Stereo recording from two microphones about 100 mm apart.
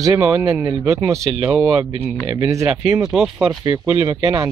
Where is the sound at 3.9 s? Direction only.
45° right (ahead or behind).